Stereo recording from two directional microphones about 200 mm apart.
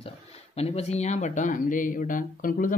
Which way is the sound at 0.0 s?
30° left (ahead or behind).